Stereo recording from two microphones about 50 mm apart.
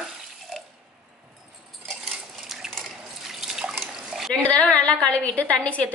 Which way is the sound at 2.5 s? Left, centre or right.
Centre.